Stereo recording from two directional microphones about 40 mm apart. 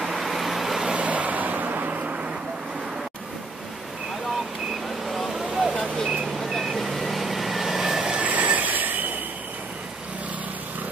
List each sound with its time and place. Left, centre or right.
0.0 s vehicle: centre
0.9 s vehicle: right
5.0 s vehicle: centre
6.3 s vehicle: centre
8.2 s train wheels squealing: right